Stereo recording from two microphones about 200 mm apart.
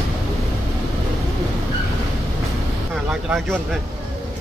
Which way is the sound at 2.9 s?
Centre (ahead or behind).